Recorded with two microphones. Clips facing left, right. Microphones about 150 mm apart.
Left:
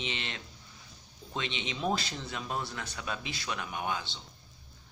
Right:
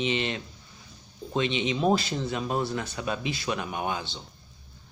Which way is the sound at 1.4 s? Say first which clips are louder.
Right 10 dB; 5° right (ahead or behind).